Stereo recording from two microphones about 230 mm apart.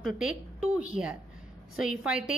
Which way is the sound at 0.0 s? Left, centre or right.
Centre.